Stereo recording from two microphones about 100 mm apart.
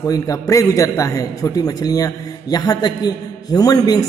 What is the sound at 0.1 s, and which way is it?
A man's voice, 35° left (ahead or behind).